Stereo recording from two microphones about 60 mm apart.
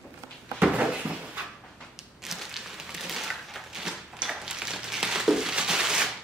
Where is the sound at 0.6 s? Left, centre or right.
Centre.